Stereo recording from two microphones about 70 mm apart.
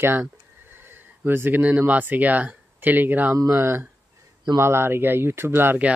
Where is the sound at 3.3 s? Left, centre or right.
Right.